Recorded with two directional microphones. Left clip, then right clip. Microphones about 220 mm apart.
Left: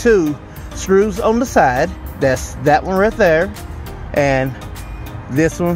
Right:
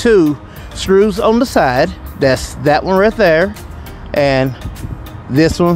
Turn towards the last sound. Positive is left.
turn(degrees=-40)  # may be behind; listen again after turning